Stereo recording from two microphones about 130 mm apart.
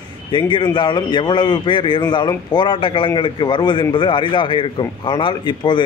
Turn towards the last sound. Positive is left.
turn(degrees=35)  # may be behind; listen again after turning